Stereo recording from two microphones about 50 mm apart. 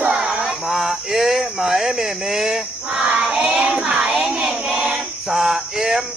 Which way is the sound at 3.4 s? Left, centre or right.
Right.